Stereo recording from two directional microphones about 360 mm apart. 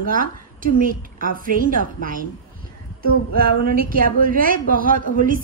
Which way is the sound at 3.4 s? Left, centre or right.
Right.